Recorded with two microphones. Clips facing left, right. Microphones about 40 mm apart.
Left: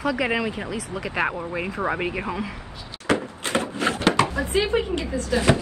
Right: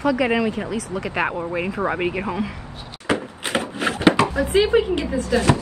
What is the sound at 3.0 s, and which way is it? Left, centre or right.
Door, right.